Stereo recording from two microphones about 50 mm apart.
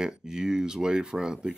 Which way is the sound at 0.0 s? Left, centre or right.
Centre.